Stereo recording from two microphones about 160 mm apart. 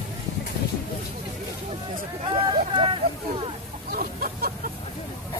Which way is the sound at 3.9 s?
65° right (ahead or behind).